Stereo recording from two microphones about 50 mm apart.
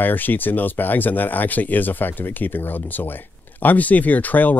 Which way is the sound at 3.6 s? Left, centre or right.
Left.